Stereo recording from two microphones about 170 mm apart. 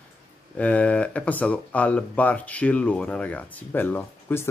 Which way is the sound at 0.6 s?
10° left (ahead or behind).